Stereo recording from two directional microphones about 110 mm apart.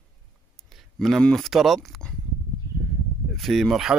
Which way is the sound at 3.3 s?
Centre (ahead or behind).